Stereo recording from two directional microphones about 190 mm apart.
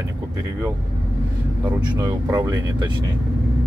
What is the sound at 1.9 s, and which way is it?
Speech, 15° right (ahead or behind).